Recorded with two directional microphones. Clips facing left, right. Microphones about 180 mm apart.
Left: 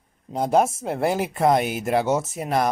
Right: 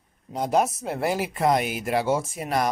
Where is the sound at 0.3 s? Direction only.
30° left (ahead or behind).